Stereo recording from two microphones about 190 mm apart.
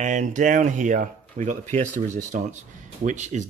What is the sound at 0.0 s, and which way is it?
Speech, 40° right (ahead or behind).